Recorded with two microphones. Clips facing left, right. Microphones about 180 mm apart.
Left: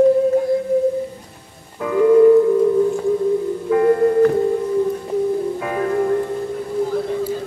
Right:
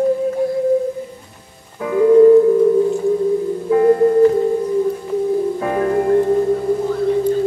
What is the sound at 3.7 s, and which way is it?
Music, 25° right (ahead or behind).